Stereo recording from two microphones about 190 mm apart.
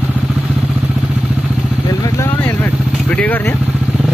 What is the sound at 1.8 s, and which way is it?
Vehicle, 15° left (ahead or behind).